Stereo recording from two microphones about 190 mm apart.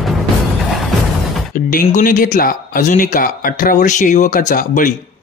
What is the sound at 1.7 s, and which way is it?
Speech, 45° left (ahead or behind).